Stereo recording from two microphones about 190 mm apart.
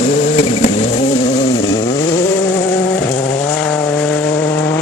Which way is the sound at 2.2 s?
10° left (ahead or behind).